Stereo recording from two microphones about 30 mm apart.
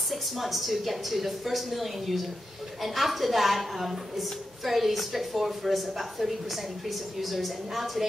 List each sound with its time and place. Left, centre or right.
0.1 s a woman's voice: centre